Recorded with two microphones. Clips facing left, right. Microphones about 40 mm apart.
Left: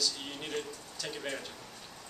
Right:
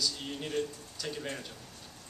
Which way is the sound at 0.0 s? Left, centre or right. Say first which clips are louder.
Right 1 dB; centre.